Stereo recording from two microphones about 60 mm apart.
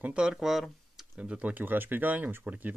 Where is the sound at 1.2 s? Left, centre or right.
Centre.